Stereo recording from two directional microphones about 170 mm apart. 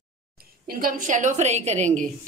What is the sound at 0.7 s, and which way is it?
A woman's voice, 55° right (ahead or behind).